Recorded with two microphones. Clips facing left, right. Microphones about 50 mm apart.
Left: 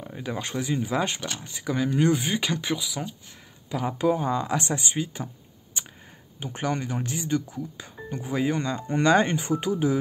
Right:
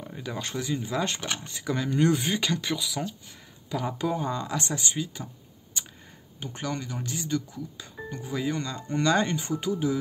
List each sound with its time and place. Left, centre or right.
0.2 s speech: centre
1.4 s speech: centre; by 5.2 s left
6.4 s speech: left